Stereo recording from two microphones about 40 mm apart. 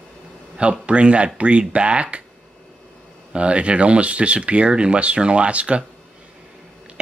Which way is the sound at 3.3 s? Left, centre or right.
Right.